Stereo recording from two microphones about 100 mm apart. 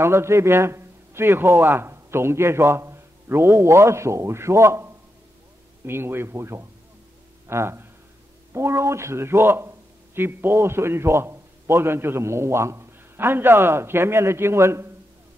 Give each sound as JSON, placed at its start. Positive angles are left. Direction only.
{"t": 0.0, "sound": "a man's voice", "side_deg": -25}